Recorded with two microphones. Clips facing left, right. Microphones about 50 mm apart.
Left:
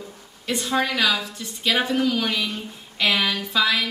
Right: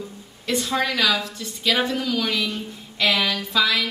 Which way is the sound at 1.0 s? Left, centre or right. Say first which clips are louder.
Right 1 dB; centre.